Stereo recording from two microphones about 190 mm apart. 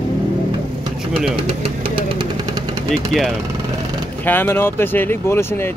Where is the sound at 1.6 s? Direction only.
25° right (ahead or behind).